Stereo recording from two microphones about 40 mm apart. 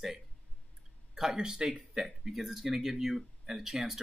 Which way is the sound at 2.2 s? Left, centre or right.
Centre.